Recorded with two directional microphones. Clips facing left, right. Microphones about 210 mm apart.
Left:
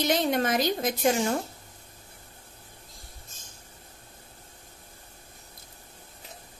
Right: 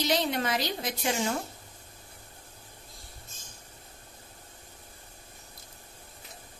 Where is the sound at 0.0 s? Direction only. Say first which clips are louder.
Left 3 dB; 50° left (ahead or behind).